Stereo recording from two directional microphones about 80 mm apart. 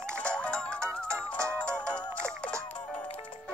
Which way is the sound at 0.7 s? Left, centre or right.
Right.